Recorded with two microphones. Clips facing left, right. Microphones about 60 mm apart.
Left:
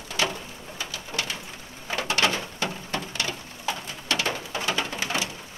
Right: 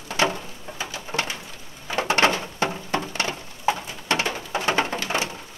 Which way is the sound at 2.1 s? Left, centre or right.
Right.